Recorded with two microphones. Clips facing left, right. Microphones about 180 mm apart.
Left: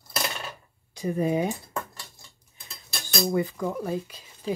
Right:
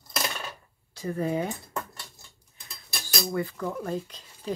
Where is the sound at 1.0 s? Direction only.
15° left (ahead or behind).